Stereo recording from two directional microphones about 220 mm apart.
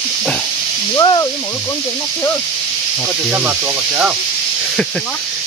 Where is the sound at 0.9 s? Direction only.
15° left (ahead or behind).